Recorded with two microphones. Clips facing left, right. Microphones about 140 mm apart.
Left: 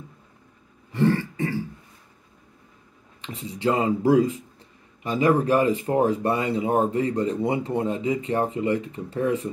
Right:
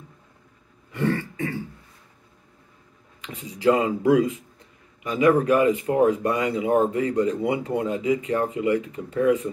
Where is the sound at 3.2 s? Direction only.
30° left (ahead or behind).